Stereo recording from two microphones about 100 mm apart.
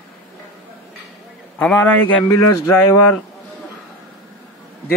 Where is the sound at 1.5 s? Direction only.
15° left (ahead or behind).